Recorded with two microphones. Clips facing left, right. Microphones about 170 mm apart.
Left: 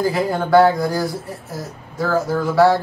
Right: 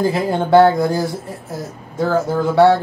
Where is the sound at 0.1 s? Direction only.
25° right (ahead or behind).